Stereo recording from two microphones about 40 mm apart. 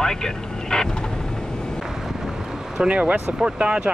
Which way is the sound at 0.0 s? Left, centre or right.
Centre.